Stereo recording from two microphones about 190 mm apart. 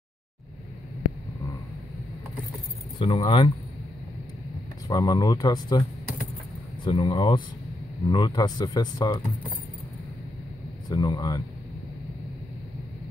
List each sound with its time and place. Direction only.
3.0 s speech: 25° left (ahead or behind)
4.8 s speech: 20° left (ahead or behind)
10.9 s speech: 20° left (ahead or behind)